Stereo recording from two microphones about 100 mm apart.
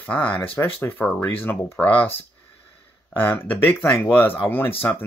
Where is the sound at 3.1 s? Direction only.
20° left (ahead or behind).